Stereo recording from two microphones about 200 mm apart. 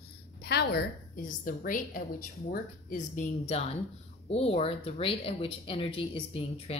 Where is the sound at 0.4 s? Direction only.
55° left (ahead or behind).